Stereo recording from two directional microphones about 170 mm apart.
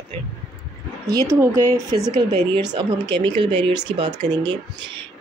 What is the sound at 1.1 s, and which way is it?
Speech, 15° right (ahead or behind).